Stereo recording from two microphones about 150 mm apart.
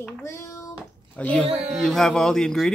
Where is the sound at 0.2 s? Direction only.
15° left (ahead or behind).